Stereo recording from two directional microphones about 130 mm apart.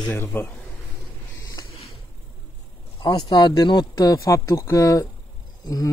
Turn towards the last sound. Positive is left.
turn(degrees=30)  # may be behind; listen again after turning